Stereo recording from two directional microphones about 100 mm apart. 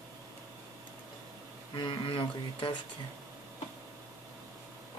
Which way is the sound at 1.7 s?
50° left (ahead or behind).